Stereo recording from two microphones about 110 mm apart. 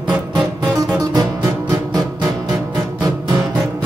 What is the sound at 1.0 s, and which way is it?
Music, 35° right (ahead or behind).